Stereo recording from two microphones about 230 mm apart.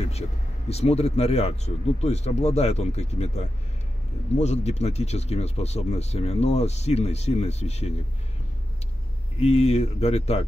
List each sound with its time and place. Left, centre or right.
0.7 s speech: left
9.4 s speech: left